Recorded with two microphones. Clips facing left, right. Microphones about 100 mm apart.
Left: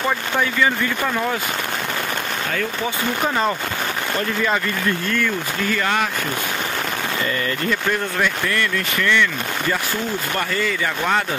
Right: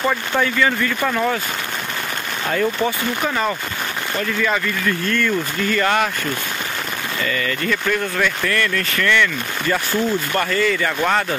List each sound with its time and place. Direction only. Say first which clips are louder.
0.4 s speech: right 1 dB; 5° left (ahead or behind)
5.1 s speech: right 2 dB; 5° left (ahead or behind)
7.9 s speech: right 1 dB; 15° left (ahead or behind)